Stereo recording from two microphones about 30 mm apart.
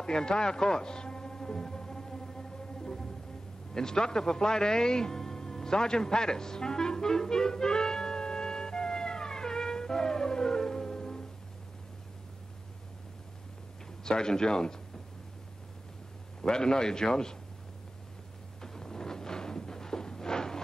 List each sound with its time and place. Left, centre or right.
0.0 s music: left
14.0 s a man's voice: left
16.3 s a man's voice: left
18.6 s a sound: centre